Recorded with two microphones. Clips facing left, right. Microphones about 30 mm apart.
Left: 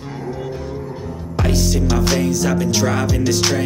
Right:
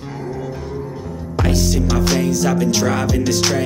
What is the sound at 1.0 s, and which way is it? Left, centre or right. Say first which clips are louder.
Music: even; centre.